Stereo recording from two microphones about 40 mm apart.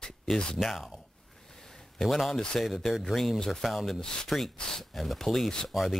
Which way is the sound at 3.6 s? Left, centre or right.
Centre.